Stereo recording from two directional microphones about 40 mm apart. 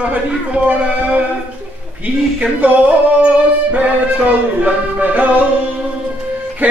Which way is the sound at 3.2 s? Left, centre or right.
Right.